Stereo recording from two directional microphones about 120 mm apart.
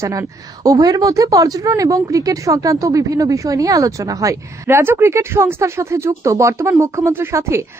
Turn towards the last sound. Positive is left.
turn(degrees=-25)  # may be behind; listen again after turning